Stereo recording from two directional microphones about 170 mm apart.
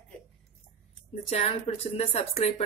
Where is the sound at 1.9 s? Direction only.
35° left (ahead or behind).